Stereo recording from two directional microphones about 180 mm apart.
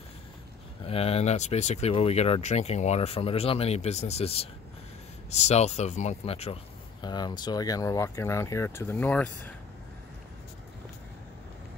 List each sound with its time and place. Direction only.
0.8 s speech: 35° left (ahead or behind); by 9.5 s 10° left (ahead or behind)